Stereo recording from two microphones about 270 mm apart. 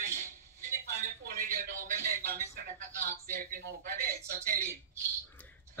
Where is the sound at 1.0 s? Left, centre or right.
Right.